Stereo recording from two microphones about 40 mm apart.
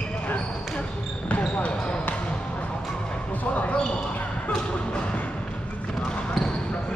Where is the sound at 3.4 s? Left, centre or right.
Left.